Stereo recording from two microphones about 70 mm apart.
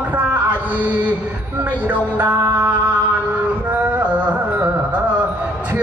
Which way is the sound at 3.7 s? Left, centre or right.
Right.